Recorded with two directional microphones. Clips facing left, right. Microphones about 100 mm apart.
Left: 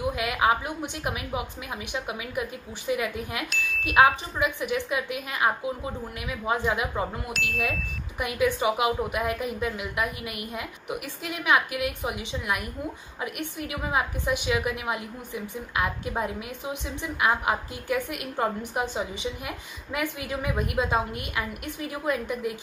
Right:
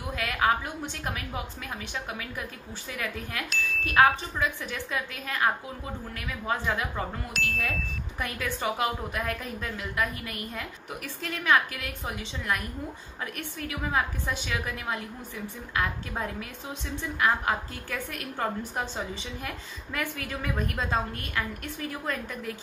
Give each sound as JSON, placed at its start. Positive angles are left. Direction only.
{"t": 0.1, "sound": "a sound", "side_deg": 15}
{"t": 1.0, "sound": "a woman's voice", "side_deg": 15}
{"t": 3.4, "sound": "chime", "side_deg": 0}
{"t": 3.8, "sound": "a woman's voice", "side_deg": 15}
{"t": 7.3, "sound": "speech", "side_deg": 5}
{"t": 8.2, "sound": "a woman's voice", "side_deg": 15}